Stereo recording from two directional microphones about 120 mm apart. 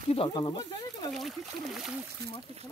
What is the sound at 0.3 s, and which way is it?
Speech, 40° left (ahead or behind).